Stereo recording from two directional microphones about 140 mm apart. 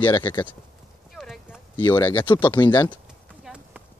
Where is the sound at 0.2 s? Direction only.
15° left (ahead or behind).